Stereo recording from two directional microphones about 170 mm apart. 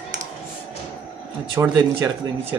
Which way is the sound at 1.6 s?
20° right (ahead or behind).